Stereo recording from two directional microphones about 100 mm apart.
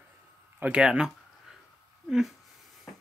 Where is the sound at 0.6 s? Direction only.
10° right (ahead or behind).